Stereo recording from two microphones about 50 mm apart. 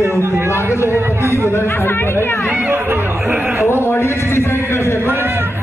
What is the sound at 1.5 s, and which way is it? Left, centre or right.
Chatter, left.